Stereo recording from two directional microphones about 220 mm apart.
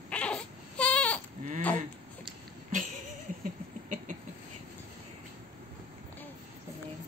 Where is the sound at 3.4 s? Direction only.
35° right (ahead or behind).